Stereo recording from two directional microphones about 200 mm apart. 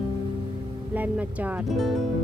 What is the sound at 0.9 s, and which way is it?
Speech, 10° right (ahead or behind).